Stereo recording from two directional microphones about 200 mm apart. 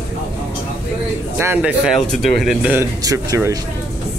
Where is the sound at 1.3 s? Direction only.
10° right (ahead or behind).